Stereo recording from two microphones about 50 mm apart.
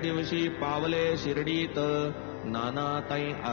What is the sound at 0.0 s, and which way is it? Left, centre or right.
Mantra, centre.